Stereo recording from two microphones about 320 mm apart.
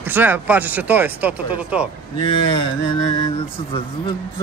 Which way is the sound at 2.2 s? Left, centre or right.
Centre.